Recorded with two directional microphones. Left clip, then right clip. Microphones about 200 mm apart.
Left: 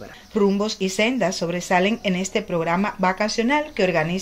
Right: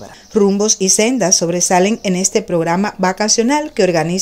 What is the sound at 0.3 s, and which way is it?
Speech, 50° right (ahead or behind).